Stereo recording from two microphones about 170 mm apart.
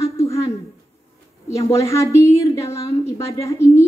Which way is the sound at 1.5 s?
15° left (ahead or behind).